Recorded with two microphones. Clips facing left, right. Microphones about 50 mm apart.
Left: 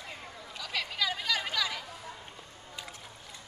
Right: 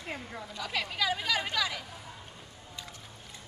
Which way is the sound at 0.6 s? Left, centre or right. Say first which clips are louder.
Right 1 dB; centre.